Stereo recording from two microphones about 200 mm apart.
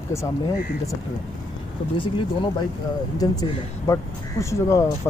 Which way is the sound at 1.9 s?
25° left (ahead or behind).